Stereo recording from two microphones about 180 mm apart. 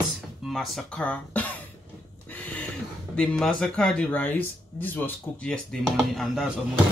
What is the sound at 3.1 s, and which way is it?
Speech, 5° left (ahead or behind).